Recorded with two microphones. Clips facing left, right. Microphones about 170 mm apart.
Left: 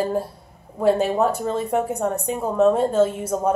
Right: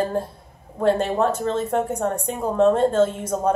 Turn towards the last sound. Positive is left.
turn(degrees=10)  # may be behind; listen again after turning